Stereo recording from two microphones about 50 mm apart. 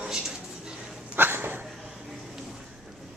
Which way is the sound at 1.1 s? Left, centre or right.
Right.